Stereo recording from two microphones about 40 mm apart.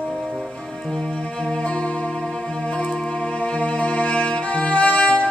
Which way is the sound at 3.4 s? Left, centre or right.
Left.